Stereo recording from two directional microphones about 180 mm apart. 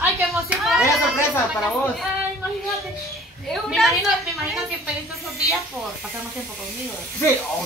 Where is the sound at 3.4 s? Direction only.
Centre (ahead or behind).